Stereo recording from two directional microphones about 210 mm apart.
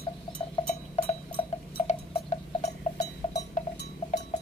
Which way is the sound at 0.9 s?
25° left (ahead or behind).